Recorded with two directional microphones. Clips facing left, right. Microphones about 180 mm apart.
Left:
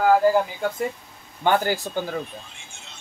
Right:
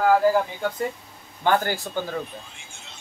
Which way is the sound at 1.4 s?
15° left (ahead or behind).